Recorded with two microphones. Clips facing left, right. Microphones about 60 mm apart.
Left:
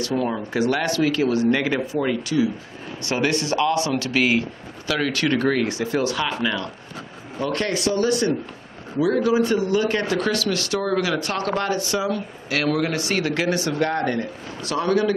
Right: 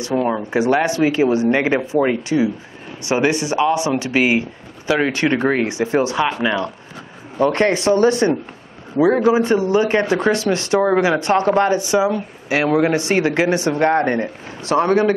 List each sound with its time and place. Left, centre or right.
0.0 s a man's voice: right